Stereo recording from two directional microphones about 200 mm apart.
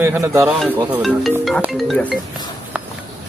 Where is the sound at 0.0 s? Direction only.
15° right (ahead or behind); by 2.1 s 5° left (ahead or behind).